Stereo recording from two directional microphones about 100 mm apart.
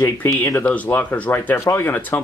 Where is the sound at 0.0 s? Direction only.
25° left (ahead or behind).